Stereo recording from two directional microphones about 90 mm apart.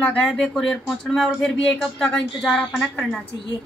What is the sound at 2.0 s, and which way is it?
Speech, 10° left (ahead or behind).